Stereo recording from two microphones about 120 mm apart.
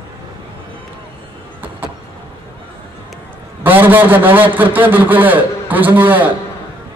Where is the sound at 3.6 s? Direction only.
15° right (ahead or behind).